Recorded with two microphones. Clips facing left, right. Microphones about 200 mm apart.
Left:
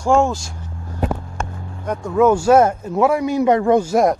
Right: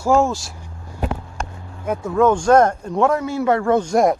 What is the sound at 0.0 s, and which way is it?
Speech, centre (ahead or behind).